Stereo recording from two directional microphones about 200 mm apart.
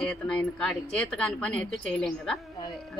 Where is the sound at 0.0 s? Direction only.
5° left (ahead or behind).